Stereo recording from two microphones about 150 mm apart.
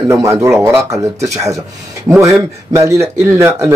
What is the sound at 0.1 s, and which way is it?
Speech, 20° right (ahead or behind).